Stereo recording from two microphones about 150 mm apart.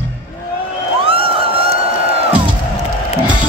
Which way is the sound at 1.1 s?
40° right (ahead or behind).